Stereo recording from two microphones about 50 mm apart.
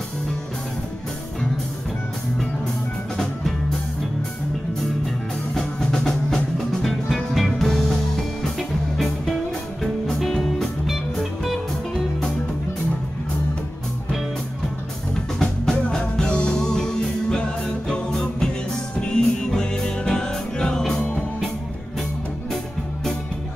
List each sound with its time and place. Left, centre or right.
5.0 s music: centre
15.3 s music: centre
16.0 s music: left
18.9 s music: centre